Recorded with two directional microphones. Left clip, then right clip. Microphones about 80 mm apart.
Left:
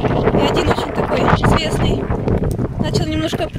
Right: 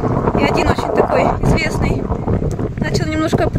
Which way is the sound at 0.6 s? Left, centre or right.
Left.